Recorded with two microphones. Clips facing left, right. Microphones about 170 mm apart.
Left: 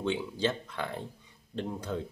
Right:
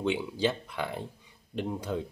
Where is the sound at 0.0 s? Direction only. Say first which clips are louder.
Right 2 dB; 15° right (ahead or behind).